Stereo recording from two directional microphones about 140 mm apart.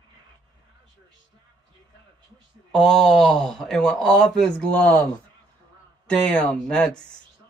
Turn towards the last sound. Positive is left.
turn(degrees=5)  # may be behind; listen again after turning